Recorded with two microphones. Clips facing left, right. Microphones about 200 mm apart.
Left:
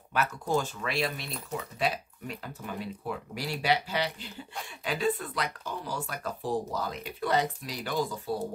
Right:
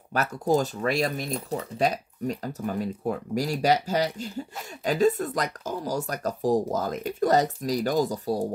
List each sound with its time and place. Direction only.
0.1 s speech: 40° right (ahead or behind)